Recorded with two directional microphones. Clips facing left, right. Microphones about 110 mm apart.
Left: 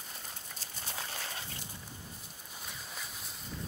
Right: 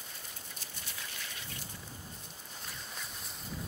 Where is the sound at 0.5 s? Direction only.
35° left (ahead or behind).